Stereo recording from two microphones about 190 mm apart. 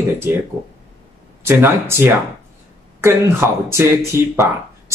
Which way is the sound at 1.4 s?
10° right (ahead or behind).